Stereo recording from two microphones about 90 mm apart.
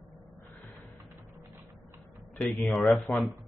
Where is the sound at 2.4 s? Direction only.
10° left (ahead or behind).